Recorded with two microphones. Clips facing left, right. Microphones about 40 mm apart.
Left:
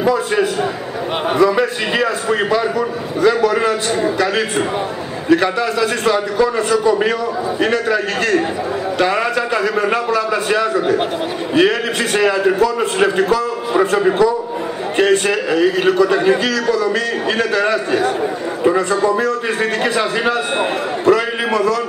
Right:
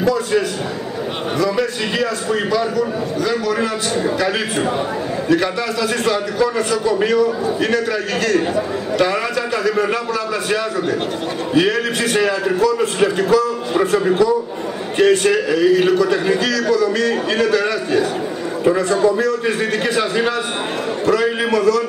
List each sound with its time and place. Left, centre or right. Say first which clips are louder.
0.0 s a man's voice: even; centre
1.4 s a man's voice: left 4 dB; left
5.3 s a man's voice: left 4 dB; centre